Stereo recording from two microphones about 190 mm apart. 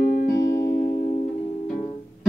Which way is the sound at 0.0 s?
45° left (ahead or behind).